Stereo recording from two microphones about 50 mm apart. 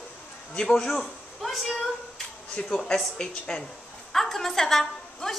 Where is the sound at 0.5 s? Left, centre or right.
Centre.